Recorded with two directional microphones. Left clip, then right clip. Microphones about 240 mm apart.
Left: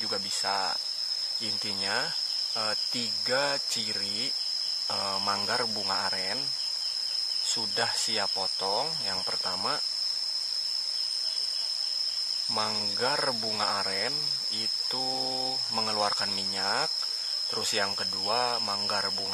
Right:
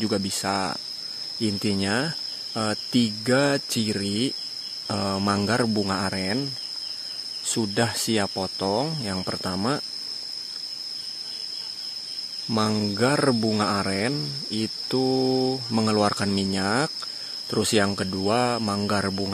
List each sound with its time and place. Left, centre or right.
0.0 s speech: right
7.5 s speech: right
12.5 s speech: right